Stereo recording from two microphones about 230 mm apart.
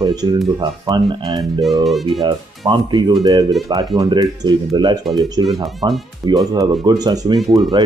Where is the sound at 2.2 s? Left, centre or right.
Centre.